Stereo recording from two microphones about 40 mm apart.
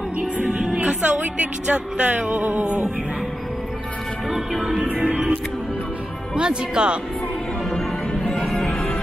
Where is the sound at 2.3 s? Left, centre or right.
Right.